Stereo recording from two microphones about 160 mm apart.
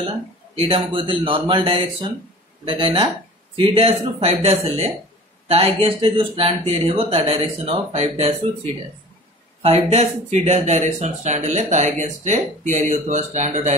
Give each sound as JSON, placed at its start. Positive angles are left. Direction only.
{"t": 0.6, "sound": "speech", "side_deg": -35}
{"t": 9.6, "sound": "speech", "side_deg": -40}